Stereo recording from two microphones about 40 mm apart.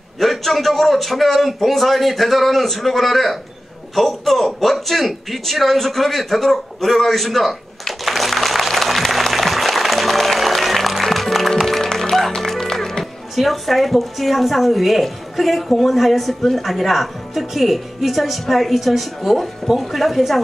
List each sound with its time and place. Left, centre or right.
0.2 s a man's voice: centre
3.9 s a sound: centre
19.8 s a man's voice: centre